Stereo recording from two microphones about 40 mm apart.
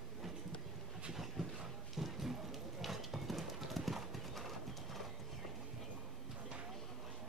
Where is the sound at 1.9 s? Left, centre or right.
Centre.